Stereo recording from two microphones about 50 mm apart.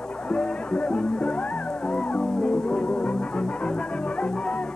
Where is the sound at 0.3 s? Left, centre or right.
Left.